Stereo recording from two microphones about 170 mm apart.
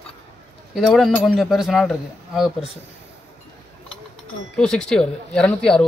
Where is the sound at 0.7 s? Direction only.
Centre (ahead or behind).